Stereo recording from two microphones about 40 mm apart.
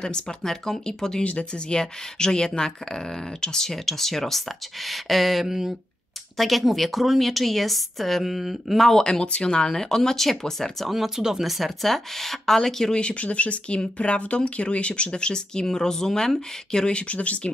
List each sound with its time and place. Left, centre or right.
0.0 s speech: centre
1.2 s speech: left; by 8.9 s centre
8.9 s speech: centre
9.2 s speech: left
10.9 s speech: centre
11.4 s speech: centre
12.9 s speech: left
16.8 s speech: left